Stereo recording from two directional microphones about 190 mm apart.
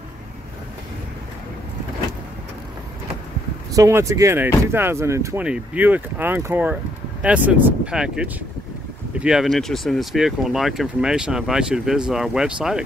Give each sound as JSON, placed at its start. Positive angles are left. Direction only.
{"t": 3.7, "sound": "speech", "side_deg": -15}